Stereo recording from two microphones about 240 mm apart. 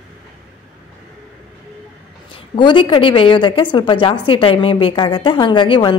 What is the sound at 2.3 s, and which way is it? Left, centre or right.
A woman's voice, centre.